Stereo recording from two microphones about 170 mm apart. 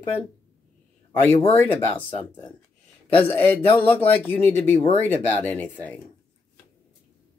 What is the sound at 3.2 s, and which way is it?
Speech, 10° left (ahead or behind).